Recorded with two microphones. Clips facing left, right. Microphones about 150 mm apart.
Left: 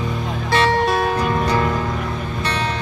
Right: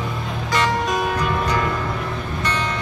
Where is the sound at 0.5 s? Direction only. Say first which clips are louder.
Left 4 dB; 30° left (ahead or behind).